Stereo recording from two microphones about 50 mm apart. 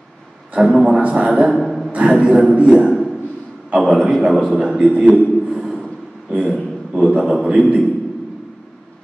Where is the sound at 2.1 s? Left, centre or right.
Centre.